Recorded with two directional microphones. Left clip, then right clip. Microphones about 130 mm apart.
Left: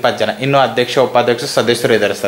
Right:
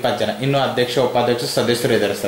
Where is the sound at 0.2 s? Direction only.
15° right (ahead or behind).